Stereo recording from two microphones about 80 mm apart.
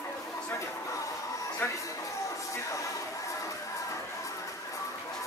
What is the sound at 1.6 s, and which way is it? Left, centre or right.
Music, left.